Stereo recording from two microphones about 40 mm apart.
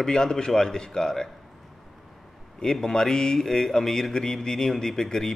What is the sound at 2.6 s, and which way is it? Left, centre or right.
A man's voice, centre.